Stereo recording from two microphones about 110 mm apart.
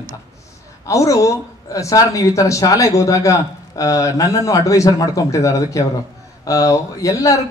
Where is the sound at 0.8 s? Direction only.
30° left (ahead or behind).